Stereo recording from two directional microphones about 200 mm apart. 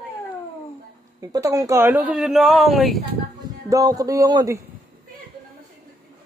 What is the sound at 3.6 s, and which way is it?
Speech, 15° right (ahead or behind).